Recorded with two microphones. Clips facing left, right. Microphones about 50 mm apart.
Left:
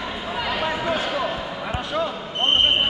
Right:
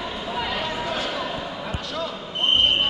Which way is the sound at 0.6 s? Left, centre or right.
Centre.